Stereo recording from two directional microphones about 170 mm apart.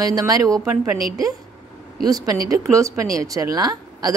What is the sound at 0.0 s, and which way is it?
Speech, 20° right (ahead or behind).